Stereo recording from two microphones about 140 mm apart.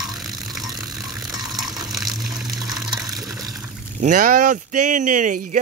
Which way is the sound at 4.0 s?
65° right (ahead or behind).